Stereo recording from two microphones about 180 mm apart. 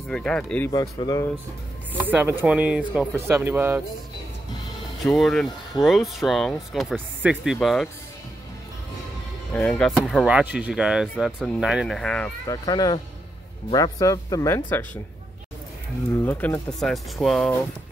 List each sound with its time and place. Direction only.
0.1 s speech: 5° left (ahead or behind)
0.7 s speech: 20° left (ahead or behind)
2.0 s speech: 10° right (ahead or behind)
5.0 s speech: centre (ahead or behind)
9.5 s speech: 5° left (ahead or behind)
12.4 s speech: 20° left (ahead or behind)
16.3 s speech: 10° left (ahead or behind)